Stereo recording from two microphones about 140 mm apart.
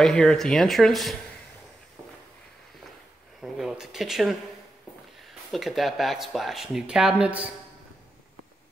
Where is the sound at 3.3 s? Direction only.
Centre (ahead or behind).